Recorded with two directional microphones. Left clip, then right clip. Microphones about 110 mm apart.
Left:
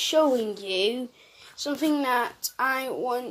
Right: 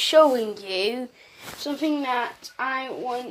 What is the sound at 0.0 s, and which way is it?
A woman's voice, 30° left (ahead or behind).